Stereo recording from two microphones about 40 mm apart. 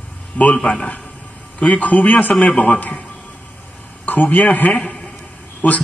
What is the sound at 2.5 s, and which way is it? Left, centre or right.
Speech, centre.